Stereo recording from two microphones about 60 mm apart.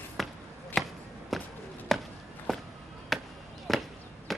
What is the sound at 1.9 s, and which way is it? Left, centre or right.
Walk, centre.